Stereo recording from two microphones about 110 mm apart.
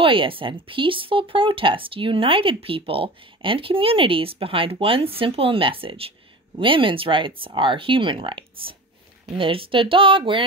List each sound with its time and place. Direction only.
0.0 s speech: 55° right (ahead or behind)